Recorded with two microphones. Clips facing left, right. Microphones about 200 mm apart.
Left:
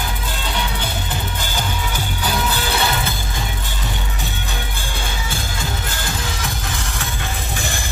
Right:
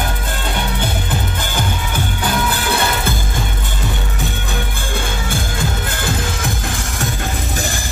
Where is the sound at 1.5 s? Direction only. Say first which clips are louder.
Right 3 dB; 55° right (ahead or behind).